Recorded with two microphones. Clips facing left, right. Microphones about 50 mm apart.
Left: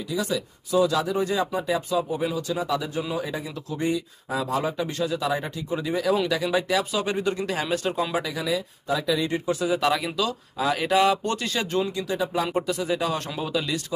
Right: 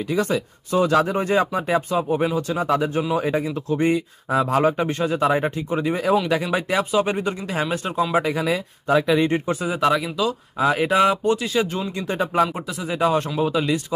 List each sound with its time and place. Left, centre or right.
0.1 s speech: right
8.1 s speech: right
9.8 s speech: centre
10.6 s speech: right
11.2 s speech: centre
12.0 s speech: right
12.5 s speech: centre
12.8 s speech: centre